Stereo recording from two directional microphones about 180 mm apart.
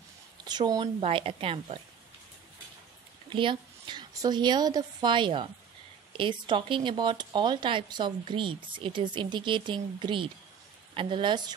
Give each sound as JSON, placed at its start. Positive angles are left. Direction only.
{"t": 0.5, "sound": "a woman's voice", "side_deg": -25}
{"t": 3.3, "sound": "speech", "side_deg": -25}